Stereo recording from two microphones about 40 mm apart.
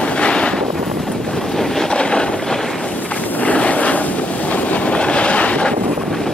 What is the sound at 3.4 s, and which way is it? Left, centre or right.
Vehicle, left.